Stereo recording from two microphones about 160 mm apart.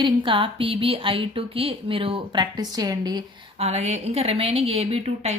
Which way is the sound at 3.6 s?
40° right (ahead or behind).